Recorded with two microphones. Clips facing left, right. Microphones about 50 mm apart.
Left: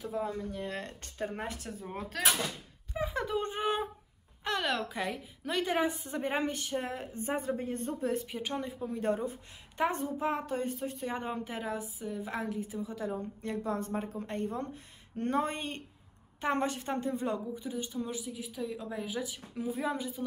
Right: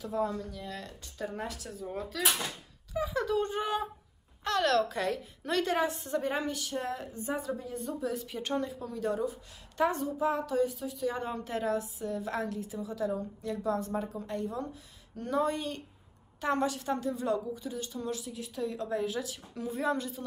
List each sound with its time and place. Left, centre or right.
0.0 s a woman's voice: centre
0.6 s a woman's voice: left
4.5 s a woman's voice: centre
6.2 s a woman's voice: left
7.2 s a woman's voice: left
8.3 s a woman's voice: centre
8.6 s a woman's voice: left
11.3 s a woman's voice: centre